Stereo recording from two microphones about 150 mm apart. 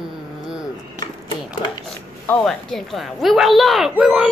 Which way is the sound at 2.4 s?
Centre (ahead or behind).